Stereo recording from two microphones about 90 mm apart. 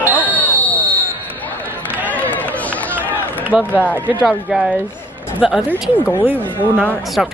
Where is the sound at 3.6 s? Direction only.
20° left (ahead or behind).